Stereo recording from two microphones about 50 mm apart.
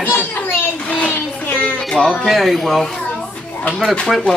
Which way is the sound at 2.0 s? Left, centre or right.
Left.